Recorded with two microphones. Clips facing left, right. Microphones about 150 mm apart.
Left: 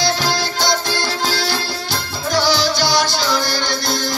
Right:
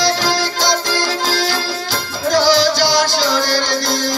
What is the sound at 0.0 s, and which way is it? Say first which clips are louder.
Music: right 2 dB; 90° right.